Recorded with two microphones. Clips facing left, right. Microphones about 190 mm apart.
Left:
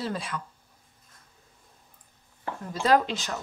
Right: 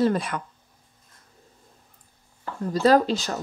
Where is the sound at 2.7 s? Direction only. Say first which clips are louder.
Right 5 dB; 40° right (ahead or behind).